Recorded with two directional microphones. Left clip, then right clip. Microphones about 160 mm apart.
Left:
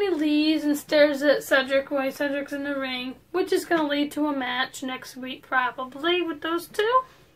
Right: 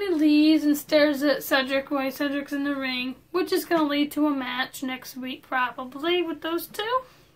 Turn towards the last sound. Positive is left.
turn(degrees=-10)  # may be behind; listen again after turning